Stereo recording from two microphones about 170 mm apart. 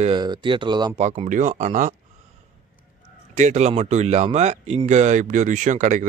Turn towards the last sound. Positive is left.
turn(degrees=-45)  # may be behind; listen again after turning